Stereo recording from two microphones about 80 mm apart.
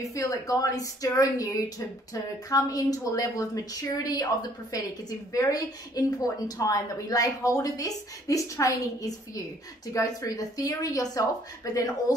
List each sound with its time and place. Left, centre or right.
0.0 s a woman's voice: left